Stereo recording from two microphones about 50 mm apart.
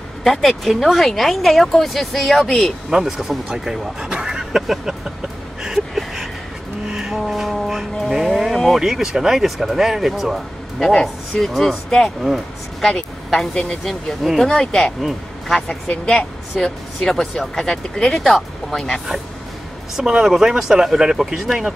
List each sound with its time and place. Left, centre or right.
0.2 s speech: centre
2.9 s speech: centre
4.1 s a sound: centre
6.9 s music: centre
8.1 s speech: centre
10.8 s speech: centre
20.0 s speech: centre